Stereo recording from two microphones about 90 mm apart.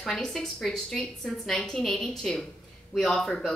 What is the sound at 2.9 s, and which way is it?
Speech, 5° left (ahead or behind).